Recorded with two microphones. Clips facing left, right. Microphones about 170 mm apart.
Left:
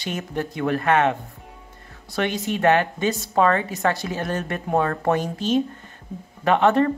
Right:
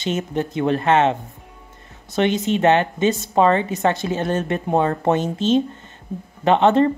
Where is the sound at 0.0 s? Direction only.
20° right (ahead or behind).